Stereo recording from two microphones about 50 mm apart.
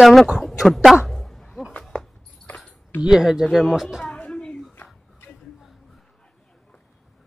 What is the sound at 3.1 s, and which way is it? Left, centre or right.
Speech, centre.